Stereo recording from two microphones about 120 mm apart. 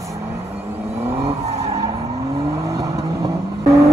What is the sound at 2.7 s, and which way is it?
Vehicle, 25° right (ahead or behind).